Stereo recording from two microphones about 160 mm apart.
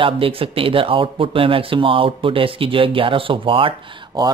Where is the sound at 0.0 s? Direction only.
35° right (ahead or behind).